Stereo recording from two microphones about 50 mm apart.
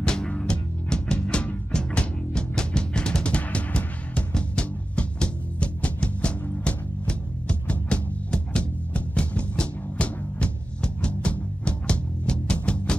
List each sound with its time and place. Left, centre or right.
0.0 s music: centre